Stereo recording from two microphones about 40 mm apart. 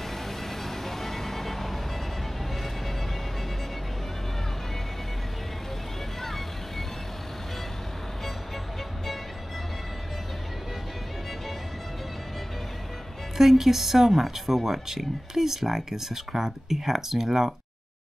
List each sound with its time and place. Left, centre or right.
0.7 s music: centre
13.4 s speech: centre